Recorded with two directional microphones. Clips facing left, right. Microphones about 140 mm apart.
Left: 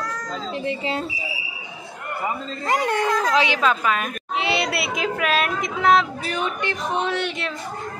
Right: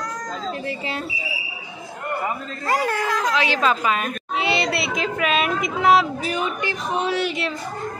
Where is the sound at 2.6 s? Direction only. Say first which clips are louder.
Left 1 dB; 20° left (ahead or behind).